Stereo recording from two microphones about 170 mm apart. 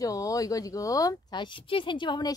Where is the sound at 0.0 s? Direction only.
20° left (ahead or behind).